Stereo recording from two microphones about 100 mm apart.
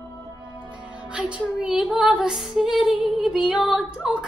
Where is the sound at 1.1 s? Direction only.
10° right (ahead or behind).